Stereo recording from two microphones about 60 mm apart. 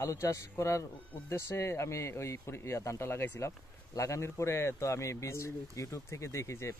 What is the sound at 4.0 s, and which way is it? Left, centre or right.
Speech, left.